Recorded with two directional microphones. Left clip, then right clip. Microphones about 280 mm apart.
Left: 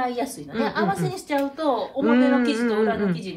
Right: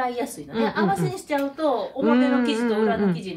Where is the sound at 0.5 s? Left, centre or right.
Centre.